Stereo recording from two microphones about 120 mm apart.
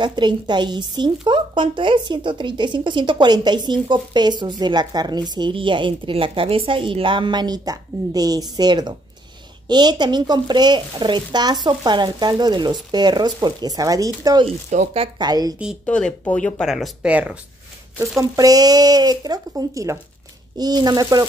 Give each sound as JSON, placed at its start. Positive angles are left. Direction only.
{"t": 0.0, "sound": "speech", "side_deg": -40}
{"t": 14.7, "sound": "speech", "side_deg": -80}
{"t": 15.1, "sound": "speech", "side_deg": -35}
{"t": 15.8, "sound": "speech", "side_deg": 10}
{"t": 16.7, "sound": "speech", "side_deg": -5}
{"t": 18.3, "sound": "speech", "side_deg": -30}